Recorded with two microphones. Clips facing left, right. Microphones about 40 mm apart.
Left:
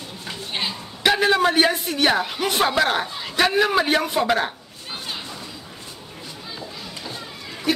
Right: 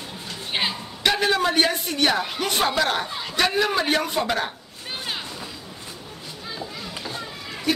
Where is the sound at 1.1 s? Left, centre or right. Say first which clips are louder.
Left 3 dB; centre.